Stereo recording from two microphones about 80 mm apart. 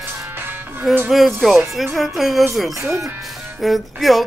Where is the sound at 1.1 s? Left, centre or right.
Centre.